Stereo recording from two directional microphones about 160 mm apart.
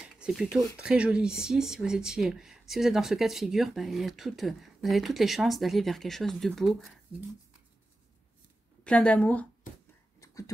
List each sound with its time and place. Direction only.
0.0 s speech: 5° right (ahead or behind)
8.8 s speech: 5° left (ahead or behind)
10.2 s a sound: 20° left (ahead or behind)